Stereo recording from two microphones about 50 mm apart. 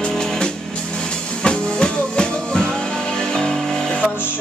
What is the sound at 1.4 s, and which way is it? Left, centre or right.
Music, centre.